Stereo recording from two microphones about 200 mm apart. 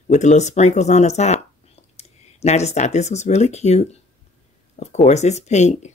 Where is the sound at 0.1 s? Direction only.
35° left (ahead or behind).